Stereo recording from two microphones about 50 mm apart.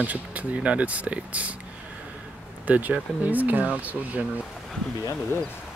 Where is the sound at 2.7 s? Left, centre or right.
Right.